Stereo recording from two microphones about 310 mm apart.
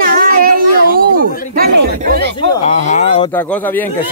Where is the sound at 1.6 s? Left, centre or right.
Right.